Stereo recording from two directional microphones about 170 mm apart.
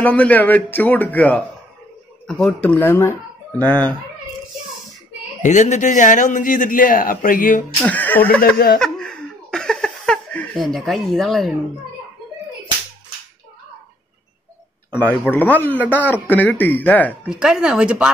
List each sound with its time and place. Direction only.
0.0 s a man's voice: 10° left (ahead or behind)
5.4 s a man's voice: 45° left (ahead or behind)
7.8 s a man's voice: 10° left (ahead or behind)
8.7 s laughter: 5° left (ahead or behind)
15.3 s a man's voice: 10° left (ahead or behind)
17.3 s speech: 5° right (ahead or behind)